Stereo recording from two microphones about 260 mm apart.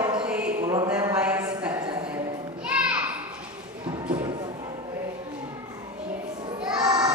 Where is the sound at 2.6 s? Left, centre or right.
Centre.